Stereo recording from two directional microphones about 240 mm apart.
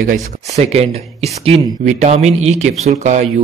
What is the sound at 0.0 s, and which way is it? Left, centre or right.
Speech, right.